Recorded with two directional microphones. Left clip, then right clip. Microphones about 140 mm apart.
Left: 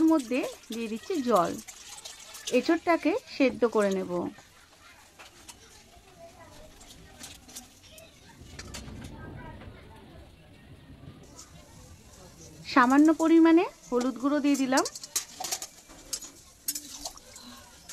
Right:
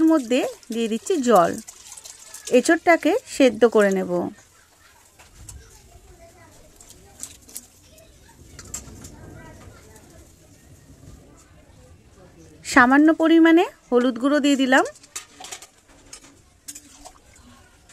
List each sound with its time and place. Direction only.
0.0 s speech: 45° right (ahead or behind)
12.6 s speech: 40° right (ahead or behind)